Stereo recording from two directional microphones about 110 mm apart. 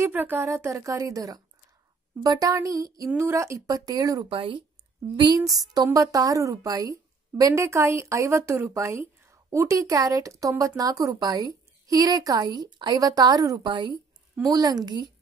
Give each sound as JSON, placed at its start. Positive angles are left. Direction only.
{"t": 0.0, "sound": "a woman's voice", "side_deg": -15}
{"t": 4.3, "sound": "speech", "side_deg": -55}
{"t": 5.4, "sound": "a woman's voice", "side_deg": -35}
{"t": 14.4, "sound": "a woman's voice", "side_deg": -35}